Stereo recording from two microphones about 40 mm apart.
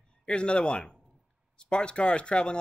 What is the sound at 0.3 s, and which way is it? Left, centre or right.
Speech, left.